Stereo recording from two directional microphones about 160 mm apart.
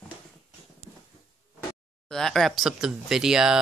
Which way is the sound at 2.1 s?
5° left (ahead or behind).